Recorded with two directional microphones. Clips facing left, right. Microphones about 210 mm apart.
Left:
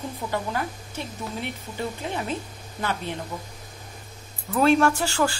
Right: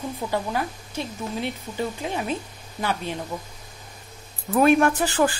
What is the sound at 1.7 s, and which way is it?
Speech, 20° right (ahead or behind).